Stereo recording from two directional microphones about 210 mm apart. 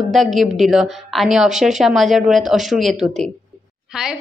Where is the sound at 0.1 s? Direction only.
Centre (ahead or behind).